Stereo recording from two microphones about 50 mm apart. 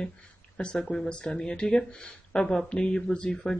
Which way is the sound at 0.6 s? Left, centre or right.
Centre.